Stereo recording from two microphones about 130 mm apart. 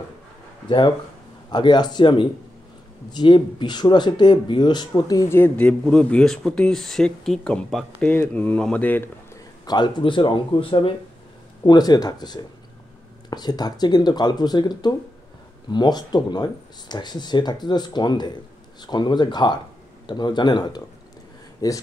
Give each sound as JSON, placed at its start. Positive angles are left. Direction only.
{"t": 0.7, "sound": "speech", "side_deg": 35}
{"t": 5.3, "sound": "speech", "side_deg": 15}
{"t": 9.7, "sound": "speech", "side_deg": 35}